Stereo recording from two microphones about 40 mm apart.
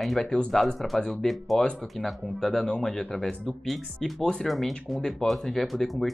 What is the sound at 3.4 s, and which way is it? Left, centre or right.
Speech, centre.